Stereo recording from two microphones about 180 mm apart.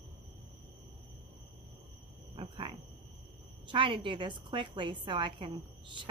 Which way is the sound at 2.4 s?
30° right (ahead or behind).